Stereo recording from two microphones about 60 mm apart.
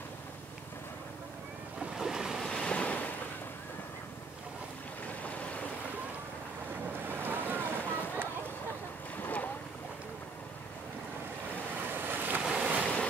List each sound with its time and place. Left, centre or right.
1.8 s waves: centre
2.4 s waves: centre
5.2 s boat: left
7.1 s boat: right
7.8 s a sound: left
9.2 s boat: left
11.7 s waves: right
12.4 s boat: centre
12.8 s waves: left